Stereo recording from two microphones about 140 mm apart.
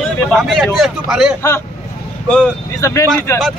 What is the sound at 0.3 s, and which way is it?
A man's voice, centre (ahead or behind).